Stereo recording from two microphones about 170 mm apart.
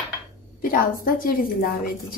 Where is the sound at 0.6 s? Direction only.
60° left (ahead or behind).